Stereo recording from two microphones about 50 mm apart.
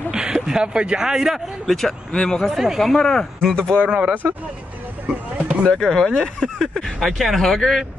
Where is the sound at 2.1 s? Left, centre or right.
Centre.